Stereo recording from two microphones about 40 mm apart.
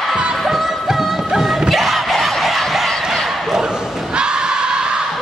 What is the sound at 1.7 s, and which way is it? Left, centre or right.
Crowd, centre.